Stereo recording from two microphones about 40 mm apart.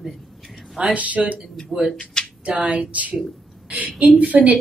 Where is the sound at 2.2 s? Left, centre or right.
Centre.